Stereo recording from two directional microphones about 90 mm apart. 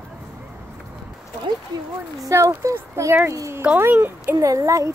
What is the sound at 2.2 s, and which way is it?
Speech, 35° right (ahead or behind).